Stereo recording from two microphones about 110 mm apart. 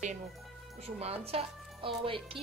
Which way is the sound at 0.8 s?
70° right (ahead or behind).